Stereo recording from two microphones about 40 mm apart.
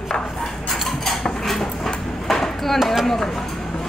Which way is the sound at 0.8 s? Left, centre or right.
Centre.